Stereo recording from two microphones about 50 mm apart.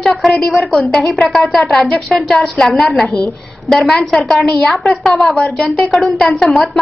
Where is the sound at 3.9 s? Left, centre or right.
Centre.